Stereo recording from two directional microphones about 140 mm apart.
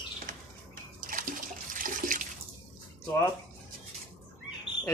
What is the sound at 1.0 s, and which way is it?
Water, 80° right.